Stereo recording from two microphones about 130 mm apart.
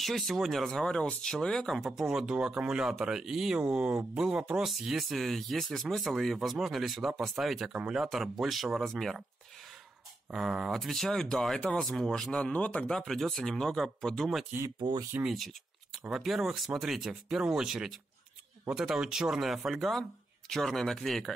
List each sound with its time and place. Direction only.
0.0 s speech: centre (ahead or behind)
10.3 s speech: 5° right (ahead or behind)
14.8 s speech: 35° right (ahead or behind)
15.3 s a sound: centre (ahead or behind)
16.1 s speech: 5° right (ahead or behind)